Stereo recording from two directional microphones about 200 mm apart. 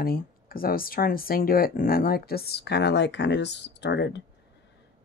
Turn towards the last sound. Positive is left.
turn(degrees=60)  # may be behind; listen again after turning